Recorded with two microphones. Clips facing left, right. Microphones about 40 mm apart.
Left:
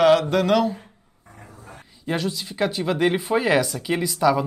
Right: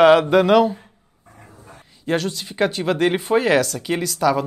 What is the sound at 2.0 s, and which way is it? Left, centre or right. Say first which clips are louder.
Speech: right 3 dB; centre.